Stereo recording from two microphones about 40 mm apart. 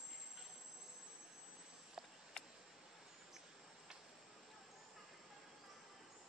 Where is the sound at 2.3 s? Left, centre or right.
Centre.